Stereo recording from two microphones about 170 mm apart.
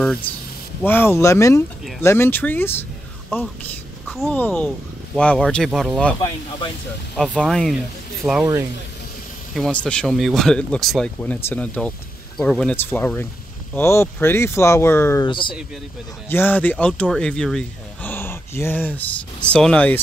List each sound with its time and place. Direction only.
0.8 s speech: 15° left (ahead or behind)
4.1 s speech: 5° left (ahead or behind)
7.2 s speech: 5° left (ahead or behind)
8.2 s speech: 15° right (ahead or behind)
9.6 s speech: 5° left (ahead or behind)
15.2 s speech: 30° left (ahead or behind)
16.3 s speech: 10° left (ahead or behind)